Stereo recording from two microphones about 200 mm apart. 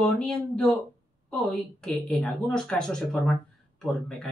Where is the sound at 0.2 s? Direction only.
Centre (ahead or behind).